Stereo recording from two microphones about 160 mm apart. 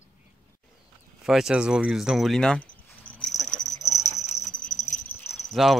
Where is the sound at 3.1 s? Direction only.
5° left (ahead or behind).